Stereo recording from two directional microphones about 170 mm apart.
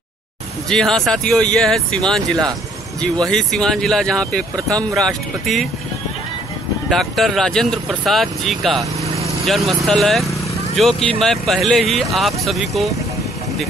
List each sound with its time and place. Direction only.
0.7 s speech: 5° left (ahead or behind)
6.9 s speech: centre (ahead or behind)
9.0 s vehicle: 40° right (ahead or behind)
9.5 s speech: centre (ahead or behind)